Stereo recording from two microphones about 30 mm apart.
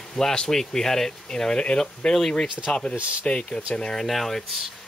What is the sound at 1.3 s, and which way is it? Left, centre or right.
Speech, left.